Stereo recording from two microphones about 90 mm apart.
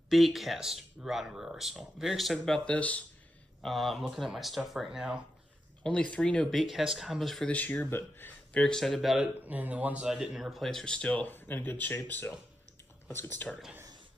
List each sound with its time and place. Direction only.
0.1 s speech: centre (ahead or behind); by 3.0 s 15° left (ahead or behind)
3.6 s speech: centre (ahead or behind)
5.9 s speech: 10° left (ahead or behind)
7.4 s speech: 15° left (ahead or behind)
8.5 s speech: 5° left (ahead or behind)
9.5 s speech: 15° right (ahead or behind); by 11.0 s 5° left (ahead or behind)
11.0 s speech: 15° left (ahead or behind)